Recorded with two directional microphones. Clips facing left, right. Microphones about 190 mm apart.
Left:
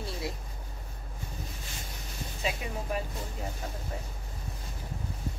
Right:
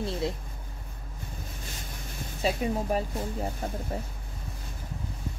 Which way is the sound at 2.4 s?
40° right (ahead or behind).